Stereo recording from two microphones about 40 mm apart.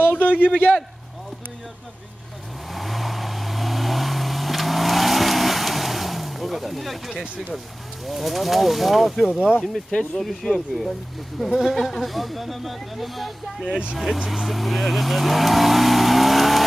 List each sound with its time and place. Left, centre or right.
0.2 s a sound: left
0.5 s a man's voice: left
2.7 s vehicle: centre
7.1 s speech: centre